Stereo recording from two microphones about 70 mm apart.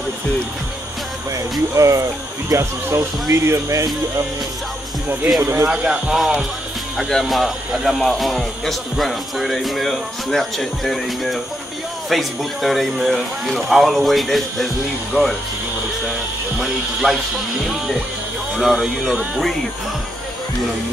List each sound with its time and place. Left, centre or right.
1.8 s speech: right
5.4 s speech: right
5.7 s speech: centre
16.5 s speech: centre
18.6 s speech: centre